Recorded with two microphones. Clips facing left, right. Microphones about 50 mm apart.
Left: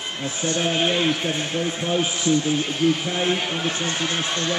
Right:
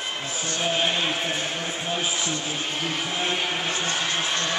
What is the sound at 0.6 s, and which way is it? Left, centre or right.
Speech, centre.